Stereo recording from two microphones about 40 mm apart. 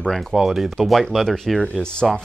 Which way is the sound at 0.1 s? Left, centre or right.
Centre.